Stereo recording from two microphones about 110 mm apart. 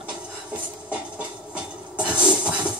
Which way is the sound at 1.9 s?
10° right (ahead or behind).